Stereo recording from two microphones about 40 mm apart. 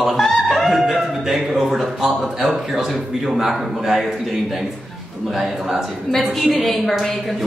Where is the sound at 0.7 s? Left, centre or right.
Centre.